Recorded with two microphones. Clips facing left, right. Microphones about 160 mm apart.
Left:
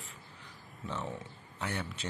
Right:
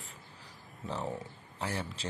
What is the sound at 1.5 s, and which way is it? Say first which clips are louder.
Speech: right 1 dB; 30° right (ahead or behind).